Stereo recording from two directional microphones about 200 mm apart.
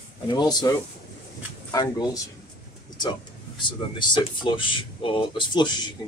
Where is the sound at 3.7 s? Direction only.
25° left (ahead or behind).